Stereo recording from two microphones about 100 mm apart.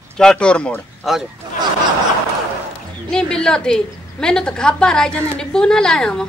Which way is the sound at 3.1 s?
5° left (ahead or behind).